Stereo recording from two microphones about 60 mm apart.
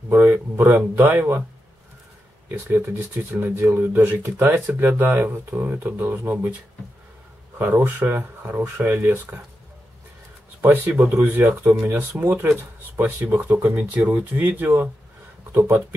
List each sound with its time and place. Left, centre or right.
0.1 s speech: right
2.8 s speech: right
3.8 s speech: right
4.2 s speech: right
5.7 s speech: right
7.5 s speech: right
10.7 s speech: right